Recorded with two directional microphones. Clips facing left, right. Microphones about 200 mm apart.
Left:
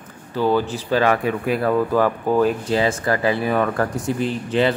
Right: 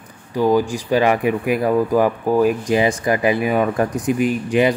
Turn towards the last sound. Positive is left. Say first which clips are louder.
# right 3 dB
turn(degrees=-15)  # may be behind; listen again after turning